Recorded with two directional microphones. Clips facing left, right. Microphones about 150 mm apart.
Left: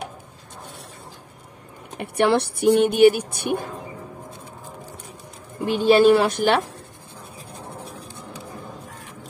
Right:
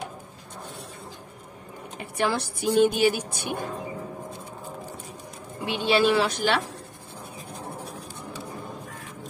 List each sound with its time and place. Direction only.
2.0 s speech: 65° left (ahead or behind)
5.7 s speech: 45° left (ahead or behind)